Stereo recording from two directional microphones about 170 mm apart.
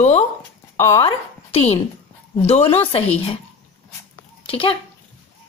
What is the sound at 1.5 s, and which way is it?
A woman's voice, 35° left (ahead or behind).